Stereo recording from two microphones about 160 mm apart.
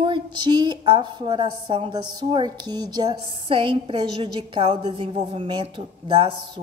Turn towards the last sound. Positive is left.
turn(degrees=-35)  # may be behind; listen again after turning